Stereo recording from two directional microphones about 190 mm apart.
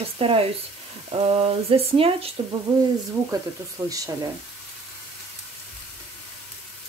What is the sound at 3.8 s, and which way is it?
Speech, 15° right (ahead or behind).